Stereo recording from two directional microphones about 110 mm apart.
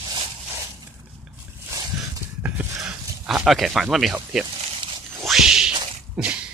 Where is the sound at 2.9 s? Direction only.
5° right (ahead or behind).